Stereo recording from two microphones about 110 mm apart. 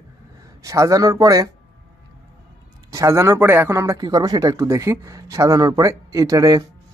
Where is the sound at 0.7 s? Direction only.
30° right (ahead or behind).